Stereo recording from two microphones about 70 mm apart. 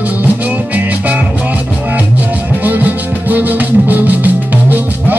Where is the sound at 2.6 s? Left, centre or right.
Right.